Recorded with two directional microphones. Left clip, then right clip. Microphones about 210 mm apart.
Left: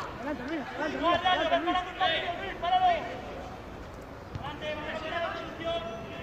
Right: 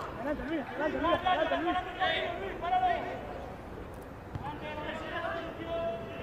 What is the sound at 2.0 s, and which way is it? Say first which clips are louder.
Speech: left 2 dB; centre (ahead or behind).